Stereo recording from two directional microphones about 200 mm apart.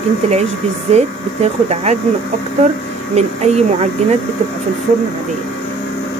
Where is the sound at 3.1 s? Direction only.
35° right (ahead or behind).